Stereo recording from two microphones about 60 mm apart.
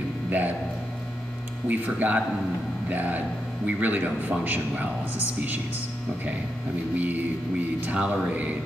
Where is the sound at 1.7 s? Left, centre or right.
Right.